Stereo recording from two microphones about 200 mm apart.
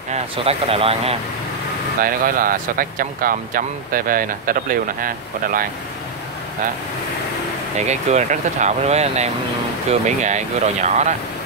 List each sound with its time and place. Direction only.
0.1 s speech: 30° right (ahead or behind)
2.0 s speech: 45° right (ahead or behind)
7.8 s speech: 35° right (ahead or behind)